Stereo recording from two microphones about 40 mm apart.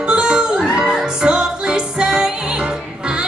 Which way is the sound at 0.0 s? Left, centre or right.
Right.